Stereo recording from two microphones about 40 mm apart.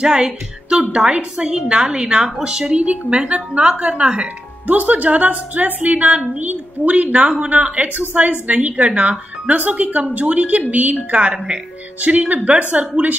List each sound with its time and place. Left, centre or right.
0.0 s a woman's voice: centre
2.7 s a woman's voice: right
4.6 s a woman's voice: right
11.3 s a woman's voice: right
12.0 s a woman's voice: right